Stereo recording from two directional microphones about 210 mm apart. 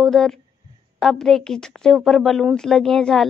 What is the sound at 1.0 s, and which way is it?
A woman's voice, centre (ahead or behind).